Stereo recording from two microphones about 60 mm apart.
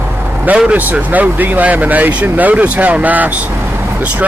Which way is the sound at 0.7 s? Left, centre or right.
Right.